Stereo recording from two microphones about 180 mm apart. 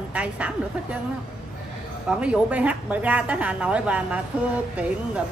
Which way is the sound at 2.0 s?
5° right (ahead or behind).